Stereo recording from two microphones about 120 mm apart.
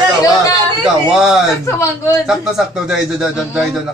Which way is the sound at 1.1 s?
5° right (ahead or behind).